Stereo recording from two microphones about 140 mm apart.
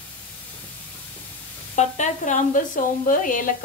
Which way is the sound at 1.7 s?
60° left (ahead or behind).